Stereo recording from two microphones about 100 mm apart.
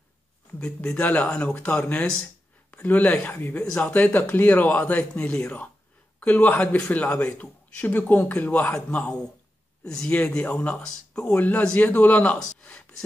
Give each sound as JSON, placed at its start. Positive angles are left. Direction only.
{"t": 0.5, "sound": "speech", "side_deg": 15}